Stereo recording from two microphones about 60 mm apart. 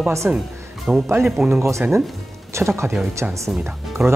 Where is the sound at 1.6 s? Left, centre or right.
Right.